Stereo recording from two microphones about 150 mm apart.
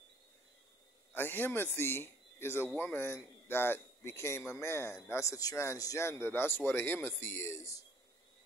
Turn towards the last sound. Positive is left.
turn(degrees=20)  # may be behind; listen again after turning